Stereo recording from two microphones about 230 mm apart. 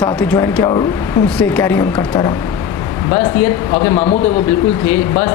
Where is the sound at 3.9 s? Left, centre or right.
Left.